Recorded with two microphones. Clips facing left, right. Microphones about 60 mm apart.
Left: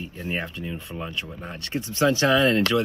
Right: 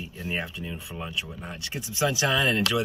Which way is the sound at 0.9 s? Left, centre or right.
Centre.